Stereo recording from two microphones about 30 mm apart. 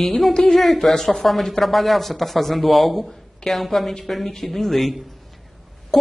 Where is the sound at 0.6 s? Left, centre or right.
Centre.